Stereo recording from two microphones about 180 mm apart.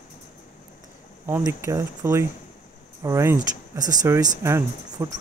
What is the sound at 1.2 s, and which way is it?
Speech, 15° right (ahead or behind).